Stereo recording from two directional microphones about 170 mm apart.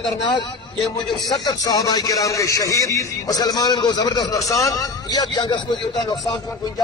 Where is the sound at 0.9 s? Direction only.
25° left (ahead or behind).